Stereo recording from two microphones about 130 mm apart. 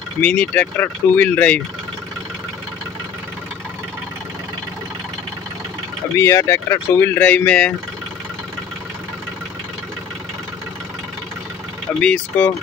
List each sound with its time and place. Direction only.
0.2 s speech: 10° left (ahead or behind)
6.1 s speech: 20° left (ahead or behind)
12.0 s speech: 10° left (ahead or behind)